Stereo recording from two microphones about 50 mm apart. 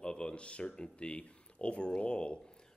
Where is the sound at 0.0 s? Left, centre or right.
Centre.